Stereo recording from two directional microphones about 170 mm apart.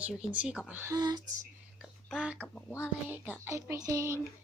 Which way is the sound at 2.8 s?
10° right (ahead or behind).